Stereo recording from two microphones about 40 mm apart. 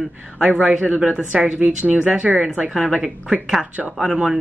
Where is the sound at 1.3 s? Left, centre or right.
Right.